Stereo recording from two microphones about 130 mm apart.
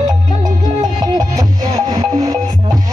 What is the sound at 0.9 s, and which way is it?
Music, 30° right (ahead or behind).